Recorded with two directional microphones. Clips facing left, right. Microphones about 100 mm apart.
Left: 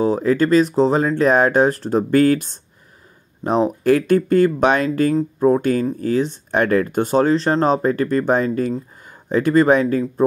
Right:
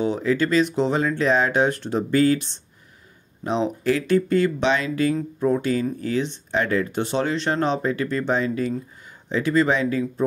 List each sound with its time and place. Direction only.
0.0 s speech: 40° left (ahead or behind)